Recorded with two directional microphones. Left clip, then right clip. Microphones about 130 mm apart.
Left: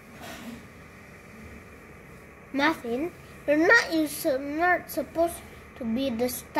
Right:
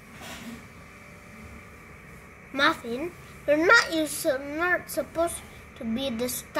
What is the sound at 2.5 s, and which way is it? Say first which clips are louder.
A woman's voice: right 1 dB; 20° right (ahead or behind).